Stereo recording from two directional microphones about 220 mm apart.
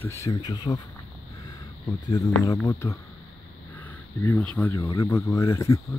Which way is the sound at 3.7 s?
10° left (ahead or behind).